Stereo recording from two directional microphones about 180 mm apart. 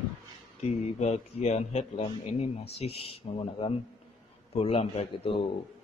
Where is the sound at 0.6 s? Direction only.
40° left (ahead or behind).